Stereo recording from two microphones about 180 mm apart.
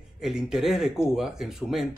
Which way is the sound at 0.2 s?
5° right (ahead or behind).